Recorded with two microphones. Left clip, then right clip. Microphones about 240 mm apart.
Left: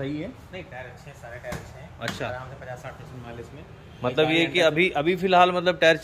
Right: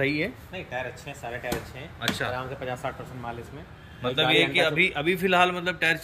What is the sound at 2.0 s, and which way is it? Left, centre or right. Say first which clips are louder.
Speech: right 3 dB; centre.